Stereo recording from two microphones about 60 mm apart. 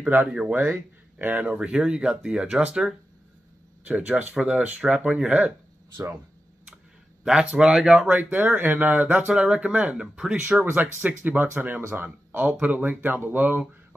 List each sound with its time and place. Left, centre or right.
0.3 s speech: centre
1.2 s speech: right
7.5 s speech: centre
8.1 s speech: right
9.3 s speech: centre
10.6 s speech: right
13.0 s speech: right